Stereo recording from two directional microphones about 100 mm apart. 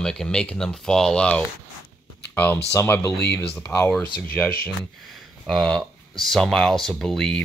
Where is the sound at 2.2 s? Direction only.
15° left (ahead or behind).